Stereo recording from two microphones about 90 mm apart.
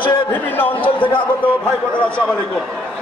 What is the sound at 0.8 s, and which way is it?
Speech, 70° left (ahead or behind).